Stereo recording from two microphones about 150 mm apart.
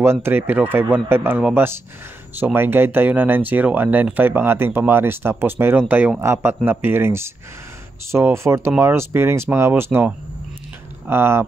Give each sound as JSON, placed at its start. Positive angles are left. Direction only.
{"t": 0.0, "sound": "speech", "side_deg": -15}